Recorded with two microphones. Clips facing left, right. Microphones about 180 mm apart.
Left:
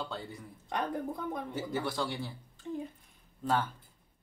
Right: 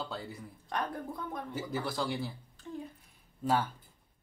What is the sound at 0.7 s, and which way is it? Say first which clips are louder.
Speech: left 2 dB; 20° left (ahead or behind).